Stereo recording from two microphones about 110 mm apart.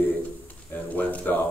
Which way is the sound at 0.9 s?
15° left (ahead or behind).